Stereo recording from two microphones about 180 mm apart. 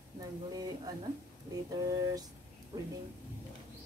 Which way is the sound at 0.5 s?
20° right (ahead or behind).